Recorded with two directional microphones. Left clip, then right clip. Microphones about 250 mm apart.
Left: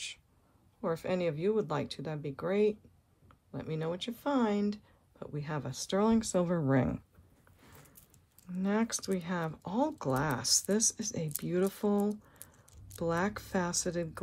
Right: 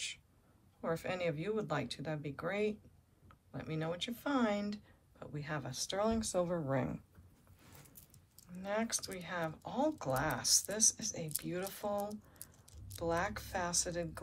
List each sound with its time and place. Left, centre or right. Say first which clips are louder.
0.7 s speech: left 5 dB; centre; by 7.0 s left
8.6 s speech: left 4 dB; left
13.0 s speech: left 3 dB; left